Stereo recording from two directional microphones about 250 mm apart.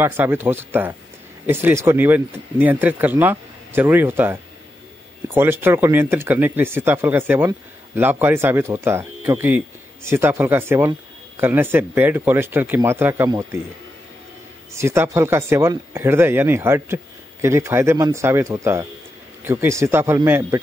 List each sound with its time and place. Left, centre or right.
0.0 s speech: centre
14.7 s speech: centre